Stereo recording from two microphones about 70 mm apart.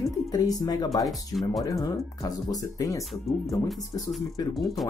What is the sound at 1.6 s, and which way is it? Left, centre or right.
Speech, left.